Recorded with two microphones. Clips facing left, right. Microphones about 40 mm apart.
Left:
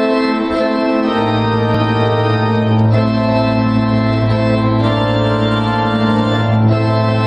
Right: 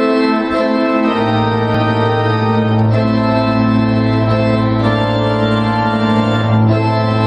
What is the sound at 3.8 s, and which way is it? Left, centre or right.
Music, centre.